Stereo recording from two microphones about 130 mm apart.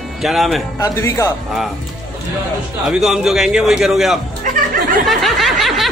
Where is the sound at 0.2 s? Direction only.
Centre (ahead or behind).